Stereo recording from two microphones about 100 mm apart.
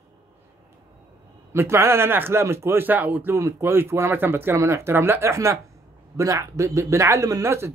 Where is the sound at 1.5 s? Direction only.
25° right (ahead or behind).